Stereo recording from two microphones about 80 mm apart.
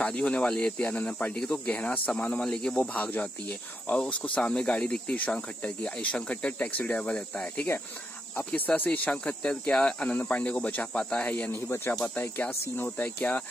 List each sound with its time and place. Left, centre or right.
0.0 s speech: centre
12.2 s speech: left